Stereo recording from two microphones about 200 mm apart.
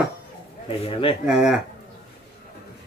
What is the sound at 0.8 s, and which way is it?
Speech, 30° left (ahead or behind).